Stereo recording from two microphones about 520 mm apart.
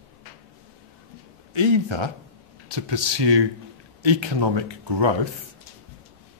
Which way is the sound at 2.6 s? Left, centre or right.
Right.